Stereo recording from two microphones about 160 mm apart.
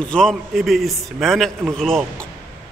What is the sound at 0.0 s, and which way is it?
A man's voice, 5° left (ahead or behind).